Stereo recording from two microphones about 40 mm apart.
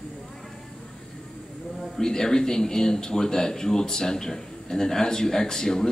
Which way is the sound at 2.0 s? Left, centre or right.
Centre.